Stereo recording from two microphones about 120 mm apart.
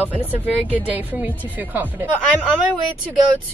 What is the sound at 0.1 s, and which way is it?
A woman's voice, 15° right (ahead or behind).